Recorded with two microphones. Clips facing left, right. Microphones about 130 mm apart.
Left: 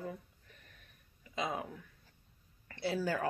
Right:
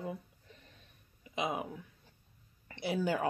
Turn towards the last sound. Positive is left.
turn(degrees=-15)  # may be behind; listen again after turning